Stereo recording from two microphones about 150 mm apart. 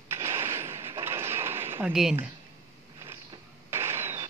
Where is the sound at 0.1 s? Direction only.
15° right (ahead or behind).